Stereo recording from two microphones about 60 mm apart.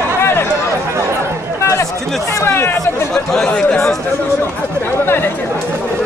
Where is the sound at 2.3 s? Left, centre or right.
Left.